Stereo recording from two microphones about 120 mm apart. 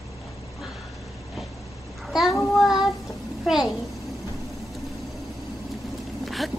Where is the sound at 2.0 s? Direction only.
Centre (ahead or behind).